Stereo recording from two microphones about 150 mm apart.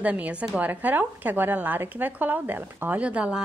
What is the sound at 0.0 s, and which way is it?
A woman's voice, 10° right (ahead or behind).